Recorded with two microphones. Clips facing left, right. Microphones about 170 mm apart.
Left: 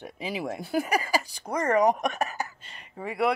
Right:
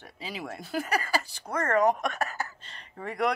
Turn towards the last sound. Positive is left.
turn(degrees=5)  # may be behind; listen again after turning